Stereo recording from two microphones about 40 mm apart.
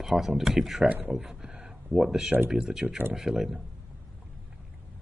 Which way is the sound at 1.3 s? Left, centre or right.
Centre.